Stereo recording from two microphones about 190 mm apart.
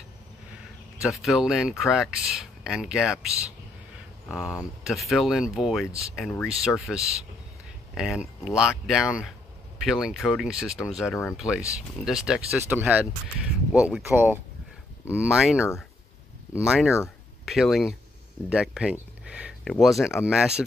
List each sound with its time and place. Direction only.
1.0 s speech: centre (ahead or behind)
4.3 s speech: centre (ahead or behind)
7.0 s speech: 30° right (ahead or behind)
7.9 s speech: 5° right (ahead or behind)
16.6 s speech: centre (ahead or behind)